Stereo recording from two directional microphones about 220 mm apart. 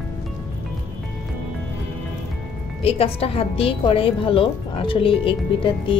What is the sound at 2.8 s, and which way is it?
A woman's voice, 25° left (ahead or behind).